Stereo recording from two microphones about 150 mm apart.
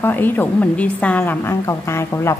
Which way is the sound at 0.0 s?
15° left (ahead or behind).